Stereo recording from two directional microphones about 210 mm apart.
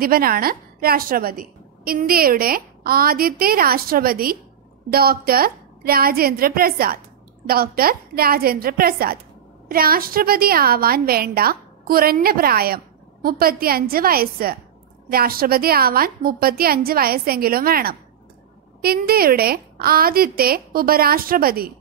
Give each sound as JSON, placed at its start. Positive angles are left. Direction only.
{"t": 0.0, "sound": "a woman's voice", "side_deg": -45}